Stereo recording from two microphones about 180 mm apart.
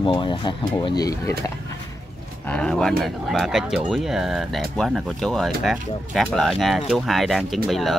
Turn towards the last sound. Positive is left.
turn(degrees=0)  # may be behind; listen again after turning